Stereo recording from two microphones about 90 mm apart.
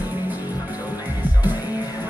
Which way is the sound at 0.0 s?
20° right (ahead or behind).